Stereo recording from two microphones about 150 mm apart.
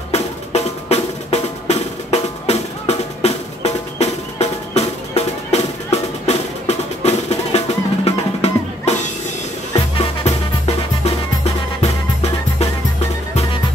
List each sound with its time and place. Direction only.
0.1 s music: 45° left (ahead or behind)
11.8 s music: 45° left (ahead or behind)